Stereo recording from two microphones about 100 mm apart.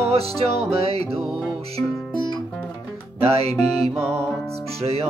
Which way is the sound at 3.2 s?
90° right.